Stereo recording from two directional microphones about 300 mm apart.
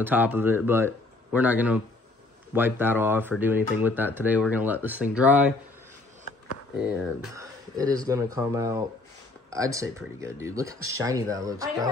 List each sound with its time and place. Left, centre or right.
0.0 s speech: centre
6.9 s speech: centre